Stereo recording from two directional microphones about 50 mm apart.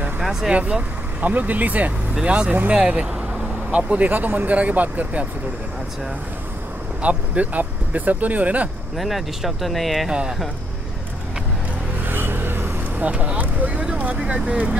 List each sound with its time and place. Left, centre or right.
0.2 s speech: centre
0.5 s speech: right
3.7 s speech: right
7.0 s speech: right
8.9 s speech: centre
10.0 s speech: centre
12.1 s vehicle: right
13.0 s speech: right